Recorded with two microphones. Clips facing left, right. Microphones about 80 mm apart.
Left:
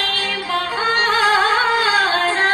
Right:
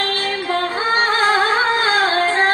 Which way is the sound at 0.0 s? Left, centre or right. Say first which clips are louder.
Right 2 dB; right.